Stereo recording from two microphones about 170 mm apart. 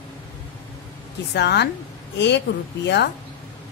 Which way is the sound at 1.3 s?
80° left.